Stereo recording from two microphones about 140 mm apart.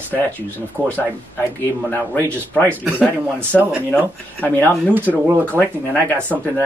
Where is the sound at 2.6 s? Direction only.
10° right (ahead or behind).